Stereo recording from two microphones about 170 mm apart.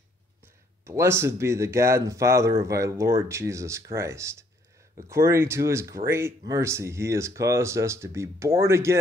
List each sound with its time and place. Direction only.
0.8 s speech: 15° right (ahead or behind)